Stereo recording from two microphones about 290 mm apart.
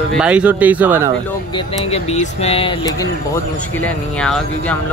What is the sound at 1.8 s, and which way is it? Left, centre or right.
Speech, left.